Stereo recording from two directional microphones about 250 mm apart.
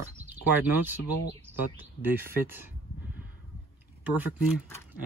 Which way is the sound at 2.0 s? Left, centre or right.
Centre.